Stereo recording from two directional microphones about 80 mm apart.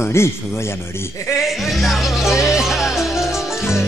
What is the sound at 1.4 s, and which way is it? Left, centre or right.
Speech, centre.